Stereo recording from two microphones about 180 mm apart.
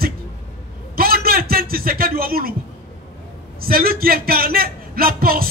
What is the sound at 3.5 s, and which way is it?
A man's voice, 55° right (ahead or behind).